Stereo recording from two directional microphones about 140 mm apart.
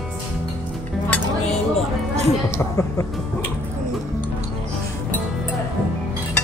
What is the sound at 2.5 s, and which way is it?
Speech, 20° left (ahead or behind).